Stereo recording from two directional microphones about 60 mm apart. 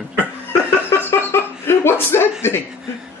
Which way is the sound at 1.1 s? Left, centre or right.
Left.